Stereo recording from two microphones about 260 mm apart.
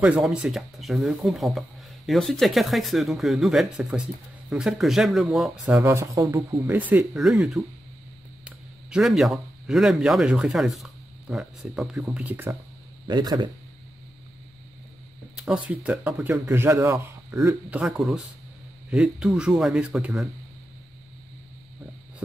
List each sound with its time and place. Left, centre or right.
0.0 s speech: centre
5.9 s speech: centre
15.3 s speech: centre